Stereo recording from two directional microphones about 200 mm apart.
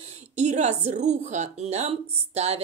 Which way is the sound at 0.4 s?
35° right (ahead or behind).